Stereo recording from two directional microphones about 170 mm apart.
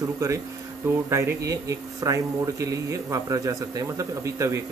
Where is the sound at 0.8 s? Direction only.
15° right (ahead or behind).